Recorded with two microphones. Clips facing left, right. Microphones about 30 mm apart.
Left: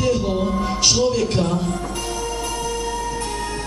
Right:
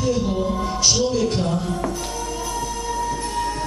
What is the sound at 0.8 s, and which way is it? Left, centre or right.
Music, left.